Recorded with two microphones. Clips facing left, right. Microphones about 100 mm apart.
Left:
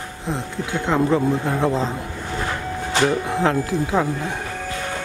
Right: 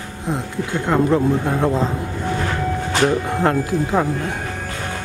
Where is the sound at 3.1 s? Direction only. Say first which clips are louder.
Right 2 dB; centre (ahead or behind).